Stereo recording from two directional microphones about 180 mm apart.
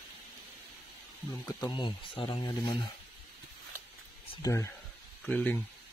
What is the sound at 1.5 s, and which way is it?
Speech, 25° left (ahead or behind).